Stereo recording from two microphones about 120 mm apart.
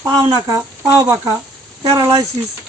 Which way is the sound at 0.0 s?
35° right (ahead or behind).